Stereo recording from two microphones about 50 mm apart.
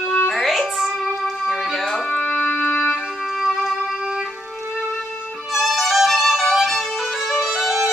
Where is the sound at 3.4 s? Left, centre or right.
Centre.